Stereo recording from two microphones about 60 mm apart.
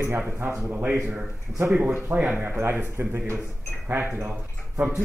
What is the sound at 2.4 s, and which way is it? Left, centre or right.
Speech, right.